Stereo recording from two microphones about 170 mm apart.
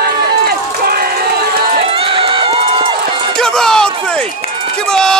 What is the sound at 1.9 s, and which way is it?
Run, 30° right (ahead or behind).